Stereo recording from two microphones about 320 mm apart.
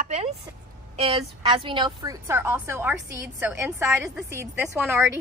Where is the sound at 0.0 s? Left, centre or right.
Centre.